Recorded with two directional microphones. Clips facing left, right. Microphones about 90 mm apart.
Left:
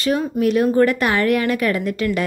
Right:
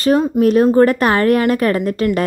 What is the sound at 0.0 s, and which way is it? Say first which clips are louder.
Speech: right 5 dB; 40° right (ahead or behind).